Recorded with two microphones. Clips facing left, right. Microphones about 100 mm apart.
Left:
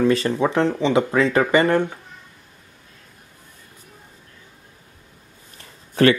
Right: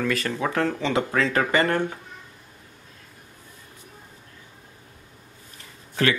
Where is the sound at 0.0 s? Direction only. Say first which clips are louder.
Left 7 dB; 25° left (ahead or behind).